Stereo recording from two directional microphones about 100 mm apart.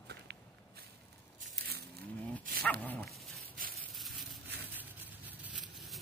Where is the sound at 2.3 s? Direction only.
15° left (ahead or behind).